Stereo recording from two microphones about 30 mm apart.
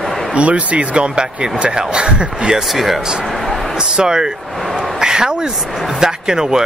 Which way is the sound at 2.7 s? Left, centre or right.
Centre.